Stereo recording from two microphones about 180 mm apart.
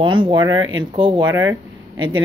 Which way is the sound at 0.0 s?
25° right (ahead or behind).